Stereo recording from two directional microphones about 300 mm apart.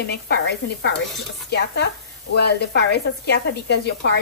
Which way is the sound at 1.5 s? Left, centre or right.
Left.